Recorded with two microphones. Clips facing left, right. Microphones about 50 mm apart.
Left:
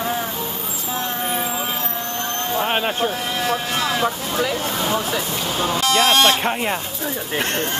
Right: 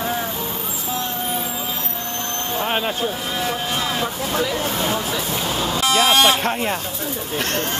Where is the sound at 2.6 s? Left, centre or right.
Centre.